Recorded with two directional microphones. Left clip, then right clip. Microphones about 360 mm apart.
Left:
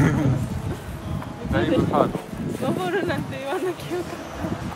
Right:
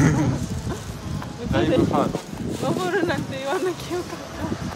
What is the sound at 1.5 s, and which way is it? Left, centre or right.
Speech, centre.